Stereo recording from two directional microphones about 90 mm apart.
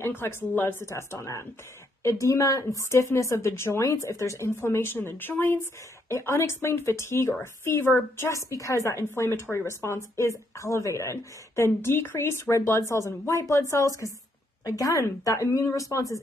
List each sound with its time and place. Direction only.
0.0 s a woman's voice: 25° left (ahead or behind)